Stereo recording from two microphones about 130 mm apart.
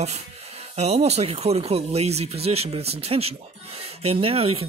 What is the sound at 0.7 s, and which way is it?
Speech, 55° right (ahead or behind).